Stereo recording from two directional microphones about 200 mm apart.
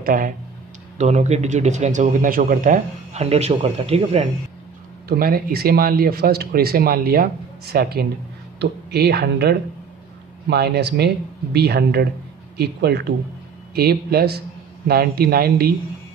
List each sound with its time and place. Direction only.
0.0 s a man's voice: 45° right (ahead or behind)
5.0 s speech: 50° right (ahead or behind)